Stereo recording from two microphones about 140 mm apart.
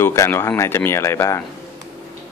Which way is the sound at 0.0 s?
20° left (ahead or behind).